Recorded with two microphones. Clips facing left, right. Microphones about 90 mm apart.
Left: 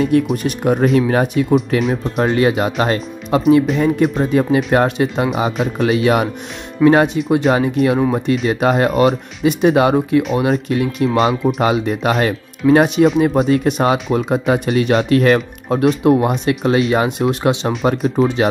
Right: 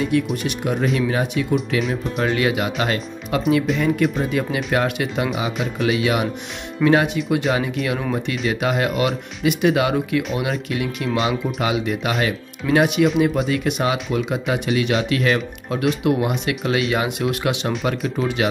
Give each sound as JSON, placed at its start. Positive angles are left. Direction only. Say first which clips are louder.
{"t": 0.4, "sound": "speech", "louder": "left 7 dB", "side_deg": 40}